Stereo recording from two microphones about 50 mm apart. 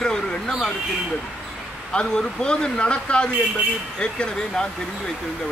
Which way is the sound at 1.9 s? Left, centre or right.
Centre.